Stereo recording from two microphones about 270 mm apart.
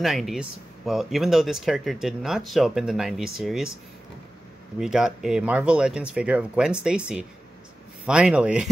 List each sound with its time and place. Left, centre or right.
0.0 s speech: centre
4.7 s speech: centre